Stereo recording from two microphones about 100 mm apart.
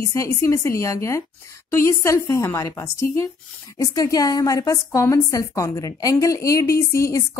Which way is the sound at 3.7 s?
35° left (ahead or behind).